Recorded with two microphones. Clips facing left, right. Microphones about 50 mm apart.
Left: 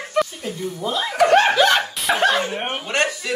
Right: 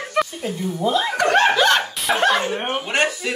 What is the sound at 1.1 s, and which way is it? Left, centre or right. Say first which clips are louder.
Speech: left 4 dB; centre.